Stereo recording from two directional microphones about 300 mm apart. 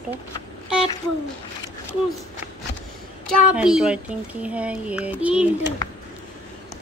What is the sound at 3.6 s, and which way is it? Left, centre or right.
A woman's voice, centre.